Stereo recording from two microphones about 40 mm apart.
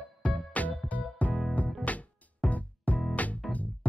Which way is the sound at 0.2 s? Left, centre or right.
Left.